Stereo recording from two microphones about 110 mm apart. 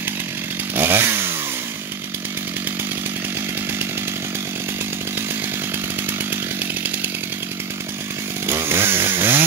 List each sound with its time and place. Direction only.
0.7 s chainsaw: 20° right (ahead or behind)
8.5 s chainsaw: 20° right (ahead or behind)